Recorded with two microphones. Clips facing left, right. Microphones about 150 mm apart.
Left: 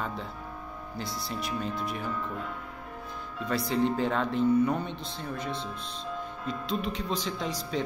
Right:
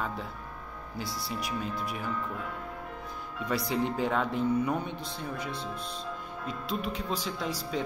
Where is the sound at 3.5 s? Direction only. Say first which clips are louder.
Left 3 dB; 10° right (ahead or behind).